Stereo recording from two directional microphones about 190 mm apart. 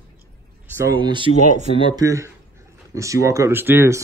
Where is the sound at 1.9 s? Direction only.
15° right (ahead or behind).